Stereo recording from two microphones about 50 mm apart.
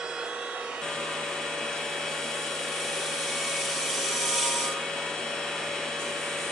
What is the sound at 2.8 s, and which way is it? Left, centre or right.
Helicopter, centre.